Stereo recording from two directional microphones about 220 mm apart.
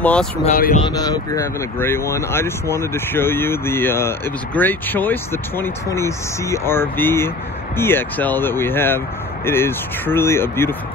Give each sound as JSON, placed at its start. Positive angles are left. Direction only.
{"t": 0.0, "sound": "speech", "side_deg": 5}
{"t": 0.4, "sound": "speech", "side_deg": 40}
{"t": 0.8, "sound": "speech", "side_deg": 15}